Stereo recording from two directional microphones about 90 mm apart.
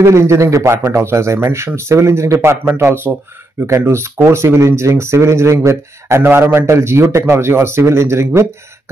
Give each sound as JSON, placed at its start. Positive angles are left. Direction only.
{"t": 0.0, "sound": "a man's voice", "side_deg": -35}